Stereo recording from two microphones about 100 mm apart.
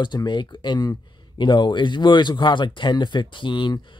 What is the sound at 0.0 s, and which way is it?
Speech, 50° left (ahead or behind).